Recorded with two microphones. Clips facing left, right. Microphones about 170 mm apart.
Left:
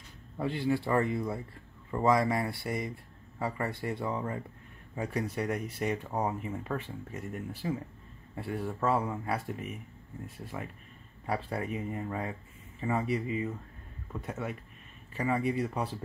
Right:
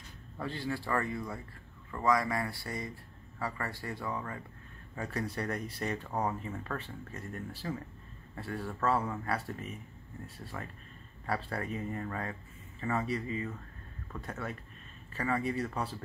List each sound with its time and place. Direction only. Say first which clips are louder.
0.4 s speech: left 6 dB; 20° left (ahead or behind)